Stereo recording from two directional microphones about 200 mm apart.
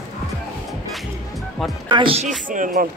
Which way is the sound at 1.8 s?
25° right (ahead or behind).